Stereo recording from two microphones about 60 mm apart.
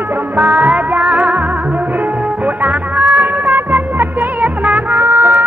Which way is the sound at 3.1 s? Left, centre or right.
Right.